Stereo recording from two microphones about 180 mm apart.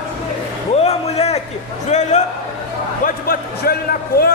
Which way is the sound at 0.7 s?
35° left (ahead or behind).